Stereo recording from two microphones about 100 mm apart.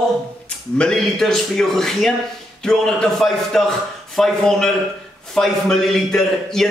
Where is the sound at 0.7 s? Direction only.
5° left (ahead or behind).